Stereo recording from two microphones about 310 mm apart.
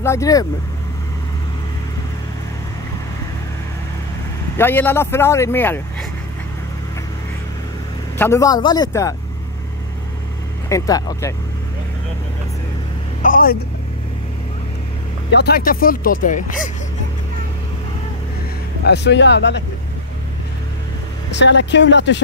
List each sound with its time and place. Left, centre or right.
0.0 s speech: centre
4.6 s speech: centre
8.2 s speech: centre
10.7 s speech: centre
13.2 s speech: left
15.3 s speech: left
18.9 s speech: left
21.4 s speech: left